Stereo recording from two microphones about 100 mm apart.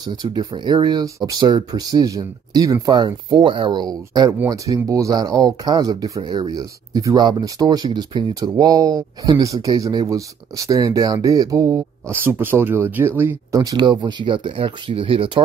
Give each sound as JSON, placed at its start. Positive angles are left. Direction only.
{"t": 0.0, "sound": "speech", "side_deg": -45}
{"t": 6.2, "sound": "speech", "side_deg": -45}
{"t": 13.5, "sound": "speech", "side_deg": -35}
{"t": 13.7, "sound": "speech", "side_deg": -50}